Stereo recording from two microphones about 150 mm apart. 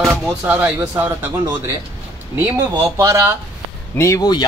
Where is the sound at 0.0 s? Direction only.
10° right (ahead or behind).